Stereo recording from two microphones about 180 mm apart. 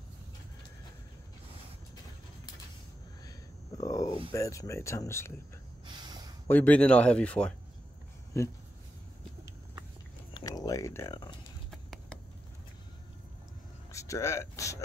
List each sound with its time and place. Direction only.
3.8 s speech: 20° left (ahead or behind)
6.0 s a sound: 20° right (ahead or behind)
6.4 s speech: 10° left (ahead or behind)
10.3 s a sound: 20° left (ahead or behind)
11.7 s computer keyboard: centre (ahead or behind)
13.9 s speech: 15° left (ahead or behind)